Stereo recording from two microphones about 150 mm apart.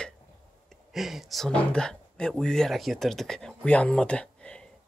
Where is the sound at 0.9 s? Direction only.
Centre (ahead or behind).